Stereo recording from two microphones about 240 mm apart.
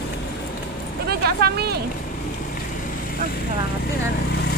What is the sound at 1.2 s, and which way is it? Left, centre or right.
Speech, right.